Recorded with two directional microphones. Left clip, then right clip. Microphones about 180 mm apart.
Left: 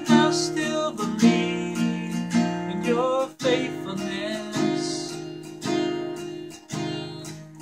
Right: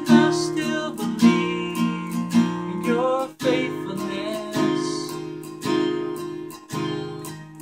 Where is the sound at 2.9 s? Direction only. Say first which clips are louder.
Right 1 dB; 5° right (ahead or behind).